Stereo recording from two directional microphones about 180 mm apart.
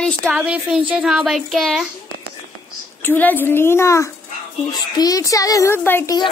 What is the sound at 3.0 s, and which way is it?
A woman's voice, 10° left (ahead or behind).